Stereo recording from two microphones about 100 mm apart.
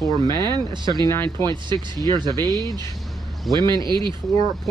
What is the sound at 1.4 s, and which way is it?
Speech, 50° right (ahead or behind).